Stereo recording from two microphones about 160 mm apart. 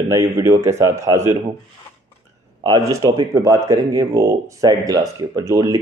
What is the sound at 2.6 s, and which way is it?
Speech, 20° right (ahead or behind).